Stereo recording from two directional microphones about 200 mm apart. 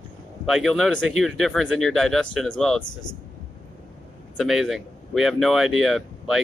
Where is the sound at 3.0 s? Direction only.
20° left (ahead or behind).